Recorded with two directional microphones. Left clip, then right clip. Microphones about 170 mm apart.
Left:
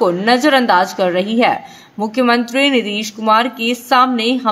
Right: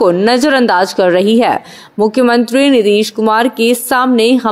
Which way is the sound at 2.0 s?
40° right (ahead or behind).